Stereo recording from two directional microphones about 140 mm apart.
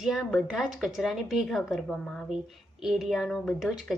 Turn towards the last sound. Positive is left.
turn(degrees=-5)  # may be behind; listen again after turning